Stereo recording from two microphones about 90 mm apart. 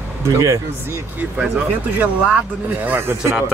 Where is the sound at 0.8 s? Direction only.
25° right (ahead or behind).